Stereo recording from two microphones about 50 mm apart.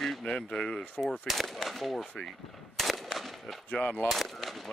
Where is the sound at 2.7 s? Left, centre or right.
Centre.